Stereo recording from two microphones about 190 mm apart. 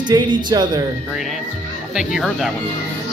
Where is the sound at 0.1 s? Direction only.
25° right (ahead or behind).